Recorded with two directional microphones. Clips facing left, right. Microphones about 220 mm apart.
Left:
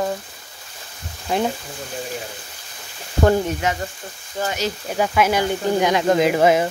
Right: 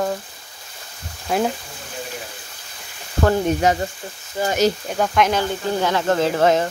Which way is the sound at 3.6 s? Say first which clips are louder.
Right 5 dB; 35° right (ahead or behind).